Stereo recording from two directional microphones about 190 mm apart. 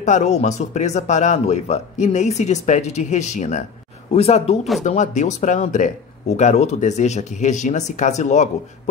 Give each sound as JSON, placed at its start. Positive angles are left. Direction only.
{"t": 0.0, "sound": "speech", "side_deg": 40}